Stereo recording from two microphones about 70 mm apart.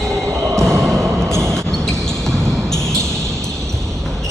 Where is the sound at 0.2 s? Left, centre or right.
Right.